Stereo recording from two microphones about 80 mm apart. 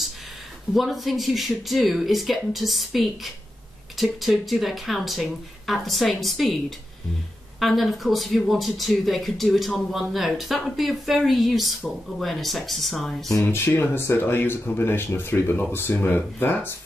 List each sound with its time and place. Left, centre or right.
0.7 s speech: centre
7.6 s speech: centre
13.3 s speech: left